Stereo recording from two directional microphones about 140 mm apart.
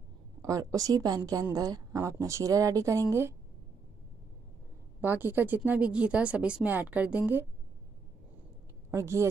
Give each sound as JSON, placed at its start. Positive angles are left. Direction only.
{"t": 0.4, "sound": "a woman's voice", "side_deg": -25}
{"t": 5.0, "sound": "a woman's voice", "side_deg": -15}
{"t": 8.9, "sound": "a woman's voice", "side_deg": -20}